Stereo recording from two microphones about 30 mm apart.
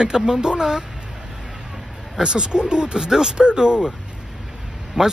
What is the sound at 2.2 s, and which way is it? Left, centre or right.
Speech, right.